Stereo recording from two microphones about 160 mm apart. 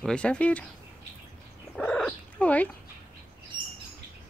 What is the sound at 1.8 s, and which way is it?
Cat, 5° left (ahead or behind).